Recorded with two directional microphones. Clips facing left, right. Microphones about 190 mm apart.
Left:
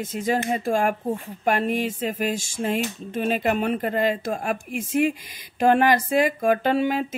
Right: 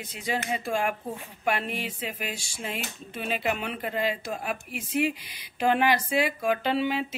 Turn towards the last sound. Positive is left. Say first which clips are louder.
# left 5 dB
turn(degrees=45)  # may be behind; listen again after turning